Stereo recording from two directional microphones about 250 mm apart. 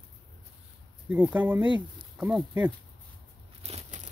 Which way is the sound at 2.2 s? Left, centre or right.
Centre.